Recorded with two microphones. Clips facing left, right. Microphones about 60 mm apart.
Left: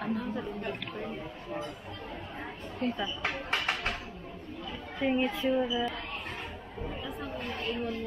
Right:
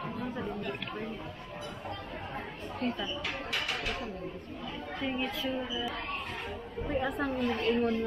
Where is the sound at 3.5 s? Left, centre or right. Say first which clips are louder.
Left 3 dB; left.